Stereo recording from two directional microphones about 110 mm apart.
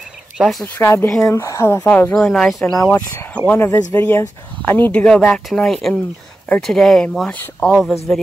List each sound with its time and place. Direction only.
0.4 s speech: centre (ahead or behind)
0.7 s speech: 20° left (ahead or behind)
1.9 s speech: 15° left (ahead or behind)
2.1 s speech: 5° left (ahead or behind)
3.4 s speech: 20° left (ahead or behind); by 7.9 s 5° left (ahead or behind)